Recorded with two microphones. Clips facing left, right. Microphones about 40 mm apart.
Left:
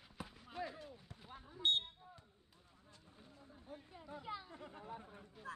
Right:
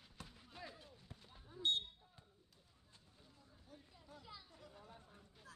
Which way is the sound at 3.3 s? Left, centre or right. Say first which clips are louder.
Left 8 dB; left.